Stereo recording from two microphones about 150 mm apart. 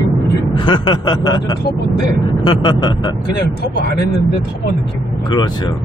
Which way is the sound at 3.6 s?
90° left.